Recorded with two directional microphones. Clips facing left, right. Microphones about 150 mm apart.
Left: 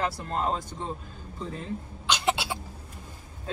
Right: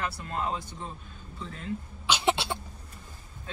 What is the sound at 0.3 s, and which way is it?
Speech, 35° left (ahead or behind).